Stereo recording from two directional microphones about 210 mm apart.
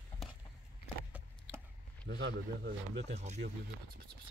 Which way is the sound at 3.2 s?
35° right (ahead or behind).